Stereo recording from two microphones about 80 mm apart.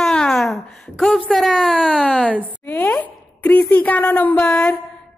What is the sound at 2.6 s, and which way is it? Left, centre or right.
Speech, left.